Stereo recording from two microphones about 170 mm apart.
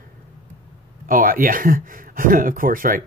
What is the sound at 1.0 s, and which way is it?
Speech, 55° right (ahead or behind).